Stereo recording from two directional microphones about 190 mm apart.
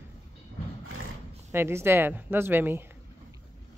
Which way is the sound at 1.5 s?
15° right (ahead or behind).